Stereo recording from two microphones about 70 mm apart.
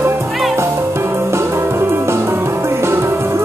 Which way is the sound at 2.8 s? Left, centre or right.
Right.